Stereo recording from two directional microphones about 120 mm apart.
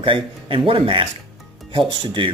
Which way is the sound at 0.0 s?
45° right (ahead or behind).